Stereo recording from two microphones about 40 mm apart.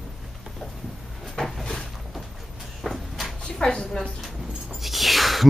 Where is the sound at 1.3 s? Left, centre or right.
Centre.